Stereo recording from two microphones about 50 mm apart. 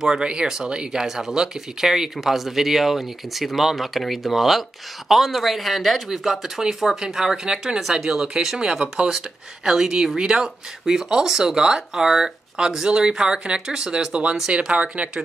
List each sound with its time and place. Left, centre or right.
0.0 s speech: centre